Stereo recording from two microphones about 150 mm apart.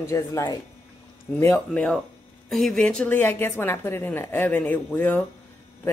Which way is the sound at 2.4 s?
Centre (ahead or behind).